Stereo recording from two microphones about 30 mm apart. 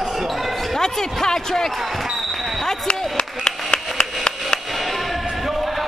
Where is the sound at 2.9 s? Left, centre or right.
Left.